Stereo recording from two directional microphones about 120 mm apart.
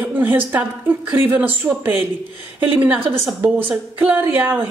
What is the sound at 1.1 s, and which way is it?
A woman's voice, 15° right (ahead or behind).